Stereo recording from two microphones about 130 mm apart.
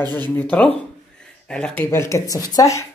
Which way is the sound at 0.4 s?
10° left (ahead or behind).